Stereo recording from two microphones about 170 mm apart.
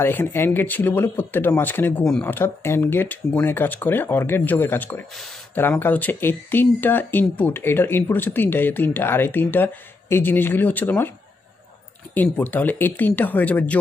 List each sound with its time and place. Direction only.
0.0 s speech: 15° left (ahead or behind)
5.1 s speech: centre (ahead or behind)
5.6 s speech: 10° left (ahead or behind)
12.1 s speech: 10° left (ahead or behind)